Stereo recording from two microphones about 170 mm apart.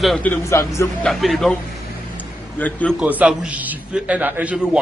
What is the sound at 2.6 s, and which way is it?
Speech, 10° left (ahead or behind).